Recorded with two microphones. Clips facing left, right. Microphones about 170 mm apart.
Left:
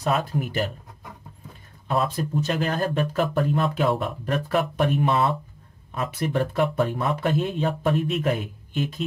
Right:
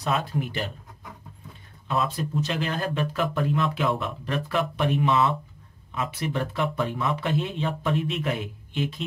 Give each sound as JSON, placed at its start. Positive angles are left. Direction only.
{"t": 0.0, "sound": "speech", "side_deg": 45}
{"t": 1.9, "sound": "speech", "side_deg": 45}